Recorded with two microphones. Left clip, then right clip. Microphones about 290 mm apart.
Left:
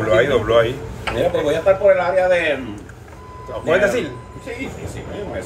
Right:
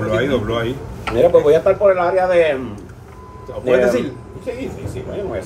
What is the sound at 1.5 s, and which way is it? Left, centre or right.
Speech, centre.